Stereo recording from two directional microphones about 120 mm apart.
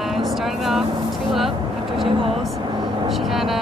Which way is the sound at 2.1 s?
50° right (ahead or behind).